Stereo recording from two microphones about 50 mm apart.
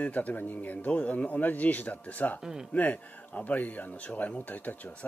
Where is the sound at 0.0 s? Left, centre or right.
Left.